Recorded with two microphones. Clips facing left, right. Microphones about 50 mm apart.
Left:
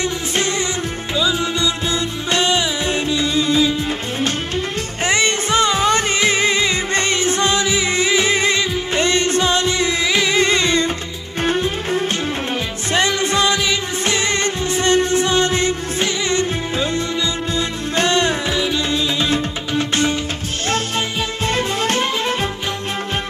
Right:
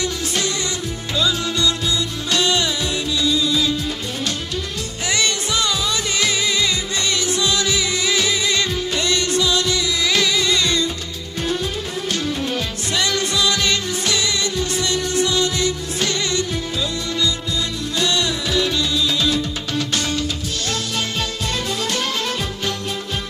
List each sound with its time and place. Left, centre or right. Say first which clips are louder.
0.0 s music: left 3 dB; left
1.1 s music: left 2 dB; centre
2.9 s music: left 2 dB; left
5.0 s music: left 4 dB; left
10.0 s music: right 1 dB; left
10.3 s music: left 4 dB; left
12.9 s music: left 4 dB; left
18.5 s music: even; centre
18.8 s music: left 1 dB; left
21.5 s music: left 7 dB; left